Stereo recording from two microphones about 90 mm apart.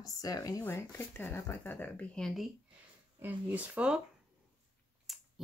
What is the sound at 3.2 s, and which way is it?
Speech, 15° right (ahead or behind).